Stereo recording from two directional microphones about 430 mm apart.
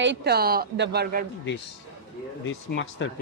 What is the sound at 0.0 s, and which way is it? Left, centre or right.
A woman's voice, right.